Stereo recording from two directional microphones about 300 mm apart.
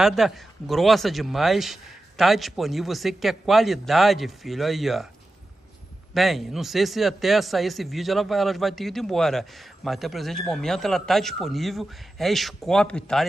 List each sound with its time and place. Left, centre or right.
0.0 s speech: centre
6.1 s speech: centre